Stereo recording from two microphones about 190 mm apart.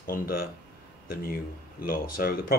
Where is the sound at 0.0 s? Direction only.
50° left (ahead or behind).